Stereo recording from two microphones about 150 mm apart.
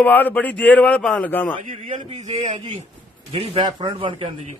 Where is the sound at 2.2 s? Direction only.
50° right (ahead or behind).